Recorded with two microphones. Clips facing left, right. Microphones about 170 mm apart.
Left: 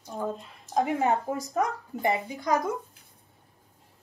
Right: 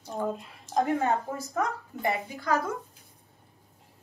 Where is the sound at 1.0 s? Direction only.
15° left (ahead or behind).